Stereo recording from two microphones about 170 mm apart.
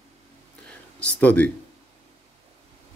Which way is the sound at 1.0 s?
10° left (ahead or behind).